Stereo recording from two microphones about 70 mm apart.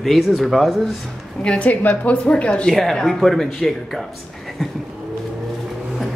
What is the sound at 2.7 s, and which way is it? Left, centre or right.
Speech, centre.